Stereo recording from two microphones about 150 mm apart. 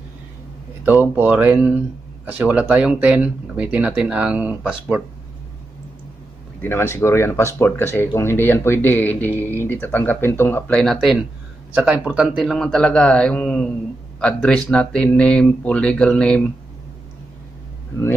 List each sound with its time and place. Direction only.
0.8 s speech: 10° right (ahead or behind)
6.6 s speech: 15° left (ahead or behind)